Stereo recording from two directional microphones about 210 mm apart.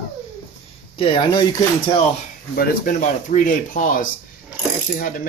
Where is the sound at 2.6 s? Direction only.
40° left (ahead or behind).